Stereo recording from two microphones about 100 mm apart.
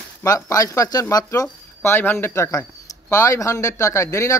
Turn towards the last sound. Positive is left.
turn(degrees=30)  # may be behind; listen again after turning